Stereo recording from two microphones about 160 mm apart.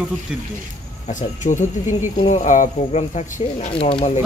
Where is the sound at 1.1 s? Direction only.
50° left (ahead or behind).